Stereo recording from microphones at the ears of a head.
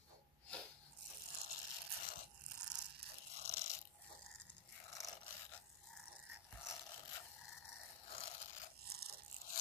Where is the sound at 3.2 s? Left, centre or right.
Left.